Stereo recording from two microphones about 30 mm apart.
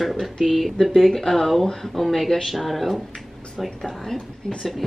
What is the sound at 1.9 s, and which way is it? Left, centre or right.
A woman's voice, centre.